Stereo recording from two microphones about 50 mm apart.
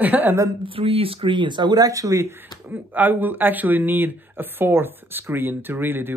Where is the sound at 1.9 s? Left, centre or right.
Right.